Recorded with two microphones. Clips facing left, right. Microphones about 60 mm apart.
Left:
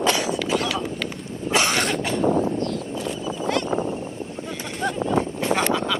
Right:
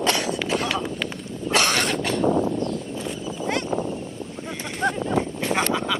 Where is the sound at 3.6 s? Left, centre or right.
Left.